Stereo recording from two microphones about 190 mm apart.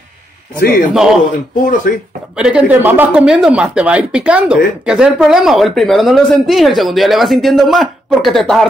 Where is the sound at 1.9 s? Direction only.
50° left (ahead or behind).